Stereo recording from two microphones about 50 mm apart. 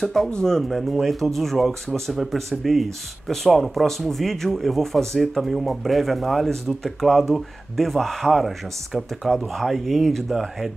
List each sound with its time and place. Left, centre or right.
0.3 s speech: centre